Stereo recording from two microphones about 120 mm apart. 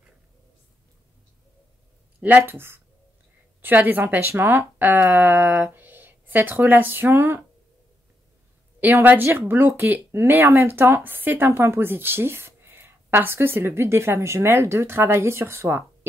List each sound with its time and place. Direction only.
2.1 s speech: 15° right (ahead or behind)
8.8 s speech: 15° right (ahead or behind)